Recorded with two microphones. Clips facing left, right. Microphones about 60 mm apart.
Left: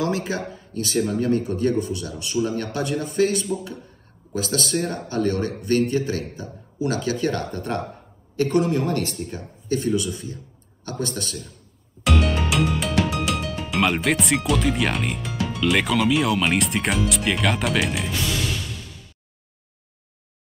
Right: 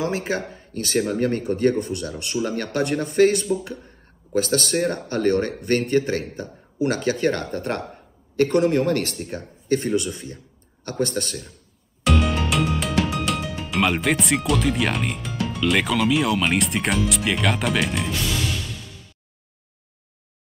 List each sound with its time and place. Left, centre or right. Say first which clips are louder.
0.0 s a man's voice: even; right
12.0 s speech: right 1 dB; centre